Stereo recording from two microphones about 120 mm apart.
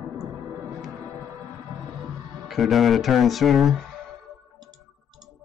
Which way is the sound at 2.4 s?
Centre (ahead or behind).